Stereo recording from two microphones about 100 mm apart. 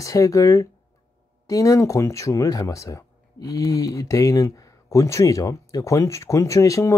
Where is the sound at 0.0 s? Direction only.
35° left (ahead or behind).